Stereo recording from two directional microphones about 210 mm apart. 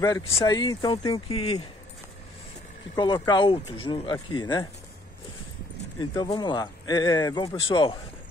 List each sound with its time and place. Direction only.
0.0 s speech: 15° left (ahead or behind)
3.0 s speech: 20° left (ahead or behind)
5.9 s speech: 20° left (ahead or behind)